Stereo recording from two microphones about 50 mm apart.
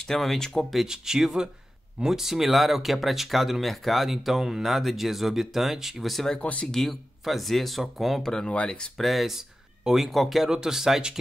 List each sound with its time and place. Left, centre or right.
0.0 s speech: centre
0.8 s speech: centre
6.4 s speech: left
6.7 s speech: centre
8.2 s speech: centre
8.9 s speech: centre